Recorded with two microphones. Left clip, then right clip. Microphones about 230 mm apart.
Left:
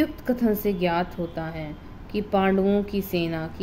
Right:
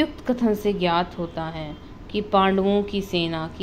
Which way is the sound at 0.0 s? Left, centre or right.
Centre.